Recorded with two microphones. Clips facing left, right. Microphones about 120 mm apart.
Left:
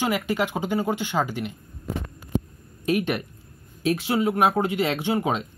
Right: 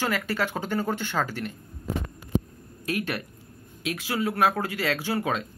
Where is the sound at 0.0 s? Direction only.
15° left (ahead or behind).